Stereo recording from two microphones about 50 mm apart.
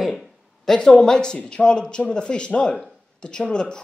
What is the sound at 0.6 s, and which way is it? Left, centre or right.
Speech, centre.